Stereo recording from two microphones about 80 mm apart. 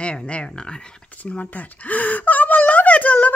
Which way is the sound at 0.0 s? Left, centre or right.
Centre.